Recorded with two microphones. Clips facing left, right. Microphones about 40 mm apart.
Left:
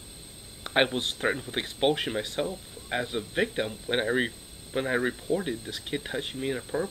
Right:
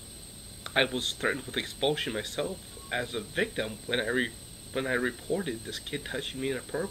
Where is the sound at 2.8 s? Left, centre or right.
Left.